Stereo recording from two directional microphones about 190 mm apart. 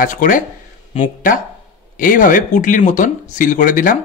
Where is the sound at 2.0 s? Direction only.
45° left (ahead or behind).